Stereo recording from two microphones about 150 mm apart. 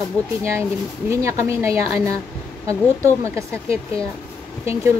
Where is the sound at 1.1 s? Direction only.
20° right (ahead or behind).